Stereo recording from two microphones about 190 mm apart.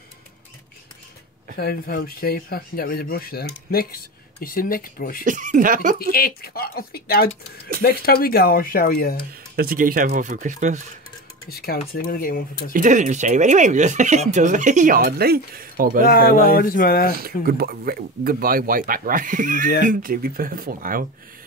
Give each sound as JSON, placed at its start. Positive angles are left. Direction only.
{"t": 1.6, "sound": "speech", "side_deg": 55}
{"t": 5.2, "sound": "speech", "side_deg": -45}
{"t": 5.9, "sound": "speech", "side_deg": 55}
{"t": 9.3, "sound": "speech", "side_deg": -50}
{"t": 11.5, "sound": "speech", "side_deg": 50}
{"t": 12.7, "sound": "speech", "side_deg": -40}
{"t": 16.5, "sound": "speech", "side_deg": 50}
{"t": 17.1, "sound": "speech", "side_deg": -50}